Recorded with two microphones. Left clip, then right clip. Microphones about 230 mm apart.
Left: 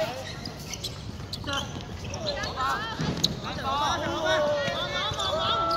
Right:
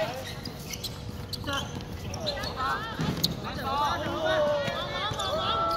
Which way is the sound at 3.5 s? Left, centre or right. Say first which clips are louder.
Even; left.